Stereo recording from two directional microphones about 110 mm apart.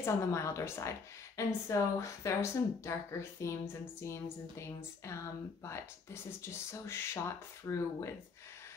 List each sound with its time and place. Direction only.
0.0 s a woman's voice: 25° left (ahead or behind)